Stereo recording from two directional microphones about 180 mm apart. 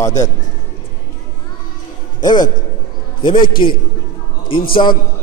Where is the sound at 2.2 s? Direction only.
25° left (ahead or behind).